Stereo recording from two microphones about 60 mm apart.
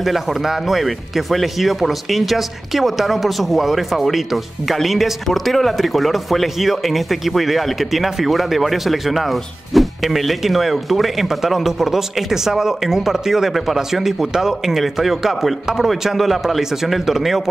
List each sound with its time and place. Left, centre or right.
0.0 s speech: centre